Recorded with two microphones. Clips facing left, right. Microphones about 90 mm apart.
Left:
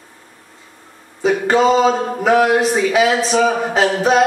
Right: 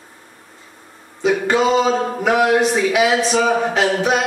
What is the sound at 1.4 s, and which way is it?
A capella, 35° left (ahead or behind).